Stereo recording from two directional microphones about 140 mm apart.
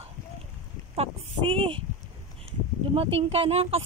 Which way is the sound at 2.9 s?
40° right (ahead or behind).